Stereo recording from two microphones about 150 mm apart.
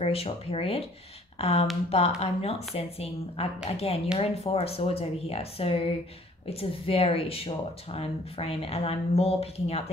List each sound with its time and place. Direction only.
0.0 s a woman's voice: 40° left (ahead or behind)